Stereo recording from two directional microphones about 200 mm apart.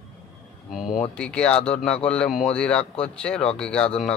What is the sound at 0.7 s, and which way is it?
Speech, centre (ahead or behind).